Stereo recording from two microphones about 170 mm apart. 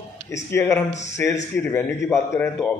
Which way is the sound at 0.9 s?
40° left (ahead or behind).